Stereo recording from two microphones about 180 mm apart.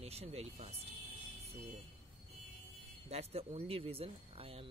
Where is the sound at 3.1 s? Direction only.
35° right (ahead or behind).